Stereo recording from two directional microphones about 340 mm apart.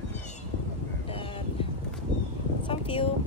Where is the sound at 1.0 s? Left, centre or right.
Centre.